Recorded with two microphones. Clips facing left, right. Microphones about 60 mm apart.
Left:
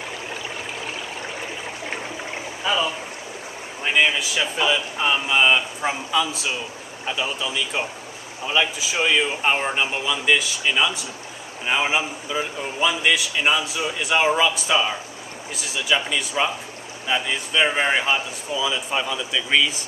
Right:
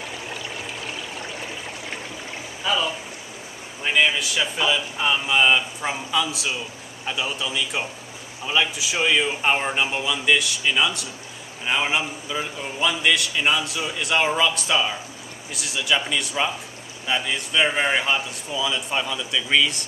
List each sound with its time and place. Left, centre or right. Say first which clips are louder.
2.6 s a man's voice: left 1 dB; centre